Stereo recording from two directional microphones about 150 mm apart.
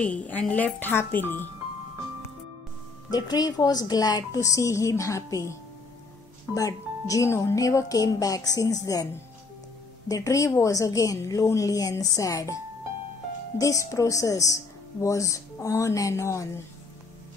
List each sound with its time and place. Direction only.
0.0 s speech: 10° left (ahead or behind)
3.1 s a woman's voice: 25° left (ahead or behind)
13.6 s a woman's voice: 20° left (ahead or behind)